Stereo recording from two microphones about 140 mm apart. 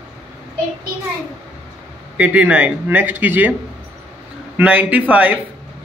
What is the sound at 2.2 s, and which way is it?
Speech, 10° right (ahead or behind).